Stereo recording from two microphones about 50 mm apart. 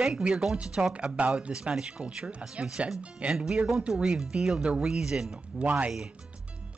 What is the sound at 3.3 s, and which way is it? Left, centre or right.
Speech, centre.